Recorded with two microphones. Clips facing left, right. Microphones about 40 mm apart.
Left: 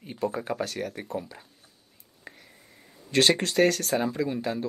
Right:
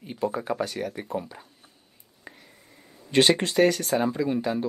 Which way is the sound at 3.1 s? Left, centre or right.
Centre.